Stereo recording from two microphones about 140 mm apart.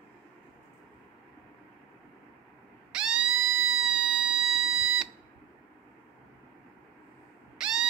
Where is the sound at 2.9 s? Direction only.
5° right (ahead or behind).